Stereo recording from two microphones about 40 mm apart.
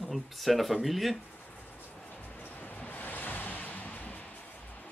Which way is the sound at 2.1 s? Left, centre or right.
Left.